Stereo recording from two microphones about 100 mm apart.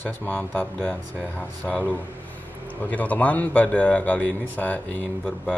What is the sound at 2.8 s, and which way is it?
Speech, 15° left (ahead or behind).